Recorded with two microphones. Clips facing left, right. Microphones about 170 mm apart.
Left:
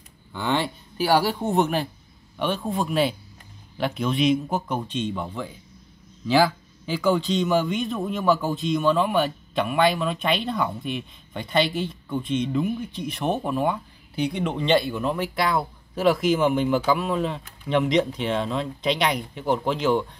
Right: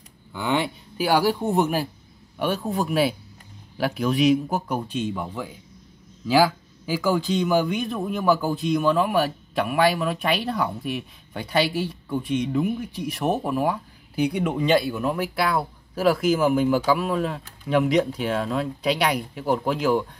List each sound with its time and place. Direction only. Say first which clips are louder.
0.3 s a man's voice: right 1 dB; 10° right (ahead or behind)